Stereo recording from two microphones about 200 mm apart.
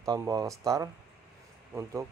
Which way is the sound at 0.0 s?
15° right (ahead or behind).